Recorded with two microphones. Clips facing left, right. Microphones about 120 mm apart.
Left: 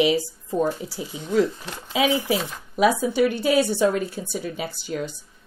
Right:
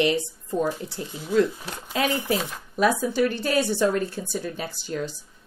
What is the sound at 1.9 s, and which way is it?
Speech, 5° left (ahead or behind).